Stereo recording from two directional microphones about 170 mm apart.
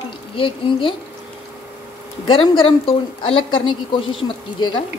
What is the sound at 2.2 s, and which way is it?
A woman's voice, 30° left (ahead or behind).